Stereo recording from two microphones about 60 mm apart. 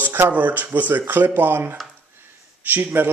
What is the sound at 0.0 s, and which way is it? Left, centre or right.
Speech, right.